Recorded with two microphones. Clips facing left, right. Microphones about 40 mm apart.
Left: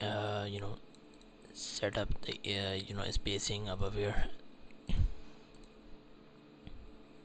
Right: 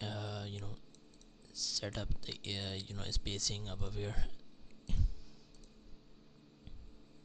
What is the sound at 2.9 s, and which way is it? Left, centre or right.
Speech, centre.